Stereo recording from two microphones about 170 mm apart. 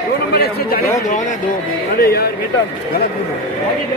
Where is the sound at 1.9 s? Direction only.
65° left (ahead or behind).